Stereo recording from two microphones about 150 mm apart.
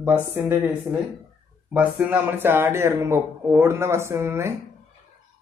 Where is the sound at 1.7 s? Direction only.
10° right (ahead or behind).